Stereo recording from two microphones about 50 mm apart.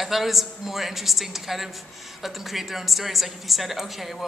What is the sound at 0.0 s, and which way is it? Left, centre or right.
A man's voice, centre.